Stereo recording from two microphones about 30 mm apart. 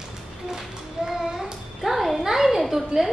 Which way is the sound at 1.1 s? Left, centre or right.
Centre.